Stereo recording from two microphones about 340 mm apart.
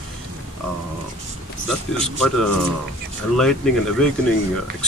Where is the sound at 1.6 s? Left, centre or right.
Centre.